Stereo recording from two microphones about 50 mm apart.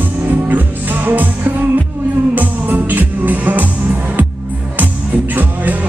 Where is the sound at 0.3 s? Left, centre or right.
Right.